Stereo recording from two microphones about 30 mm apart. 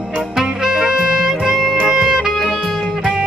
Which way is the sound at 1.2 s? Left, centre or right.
Centre.